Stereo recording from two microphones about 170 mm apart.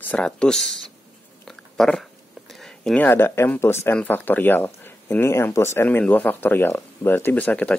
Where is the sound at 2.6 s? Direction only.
5° left (ahead or behind).